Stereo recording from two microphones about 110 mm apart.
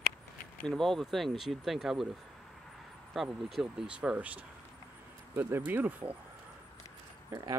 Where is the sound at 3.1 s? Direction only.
Centre (ahead or behind).